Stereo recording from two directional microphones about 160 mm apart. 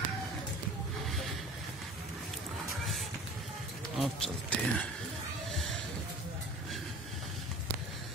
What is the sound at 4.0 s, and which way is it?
Speech, 5° left (ahead or behind).